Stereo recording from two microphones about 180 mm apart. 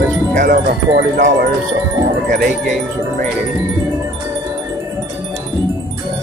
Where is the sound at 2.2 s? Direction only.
45° right (ahead or behind).